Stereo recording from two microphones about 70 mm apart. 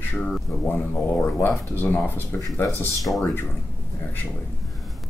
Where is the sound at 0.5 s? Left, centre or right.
Left.